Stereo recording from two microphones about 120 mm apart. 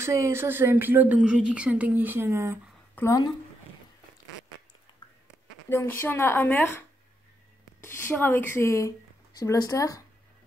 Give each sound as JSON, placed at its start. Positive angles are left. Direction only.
{"t": 0.0, "sound": "a woman's voice", "side_deg": -20}
{"t": 3.0, "sound": "speech", "side_deg": 15}
{"t": 5.7, "sound": "a woman's voice", "side_deg": 20}
{"t": 7.8, "sound": "a woman's voice", "side_deg": 20}